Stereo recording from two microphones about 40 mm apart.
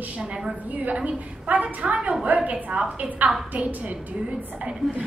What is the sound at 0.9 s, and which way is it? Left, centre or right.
A woman's voice, right.